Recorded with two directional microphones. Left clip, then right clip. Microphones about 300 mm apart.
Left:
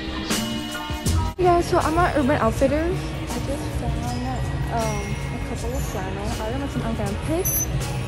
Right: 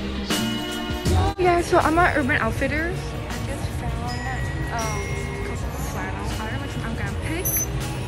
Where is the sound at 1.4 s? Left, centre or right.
Centre.